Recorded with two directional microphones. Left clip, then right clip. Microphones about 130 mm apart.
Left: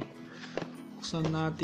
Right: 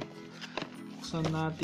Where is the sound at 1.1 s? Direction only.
Centre (ahead or behind).